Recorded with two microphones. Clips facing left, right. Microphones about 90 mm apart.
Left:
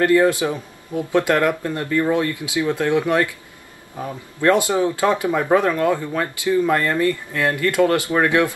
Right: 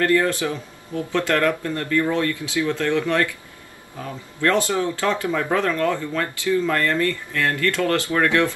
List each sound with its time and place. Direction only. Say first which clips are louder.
0.0 s speech: left 4 dB; 20° left (ahead or behind)